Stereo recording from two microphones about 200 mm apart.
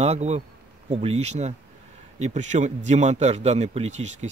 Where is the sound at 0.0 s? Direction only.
35° right (ahead or behind).